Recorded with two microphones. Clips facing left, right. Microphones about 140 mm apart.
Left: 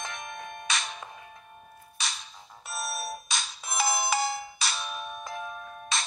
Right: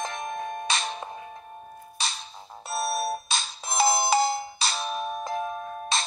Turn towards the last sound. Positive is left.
turn(degrees=-35)  # may be behind; listen again after turning